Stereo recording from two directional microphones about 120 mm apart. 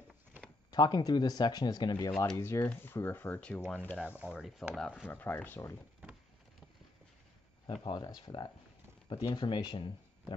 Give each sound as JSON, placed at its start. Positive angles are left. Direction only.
{"t": 0.7, "sound": "speech", "side_deg": 35}
{"t": 2.3, "sound": "speech", "side_deg": 25}
{"t": 4.2, "sound": "speech", "side_deg": -5}
{"t": 5.0, "sound": "speech", "side_deg": 15}
{"t": 7.7, "sound": "speech", "side_deg": 45}